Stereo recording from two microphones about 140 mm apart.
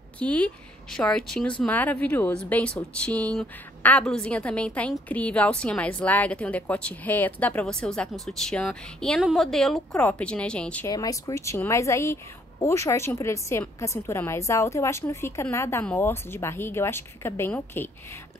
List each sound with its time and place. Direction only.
0.2 s a woman's voice: 10° left (ahead or behind)
10.9 s a woman's voice: 25° left (ahead or behind)